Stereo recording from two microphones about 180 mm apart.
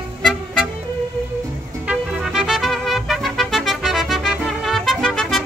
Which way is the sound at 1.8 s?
5° right (ahead or behind).